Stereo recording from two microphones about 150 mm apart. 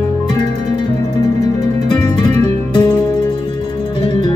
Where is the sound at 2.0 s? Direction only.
25° left (ahead or behind).